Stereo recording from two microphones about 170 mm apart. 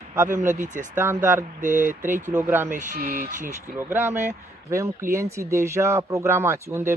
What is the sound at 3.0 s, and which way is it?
Speech, 60° right (ahead or behind).